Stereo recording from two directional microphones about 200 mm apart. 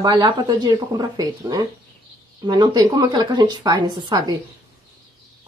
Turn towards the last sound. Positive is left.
turn(degrees=-20)  # may be behind; listen again after turning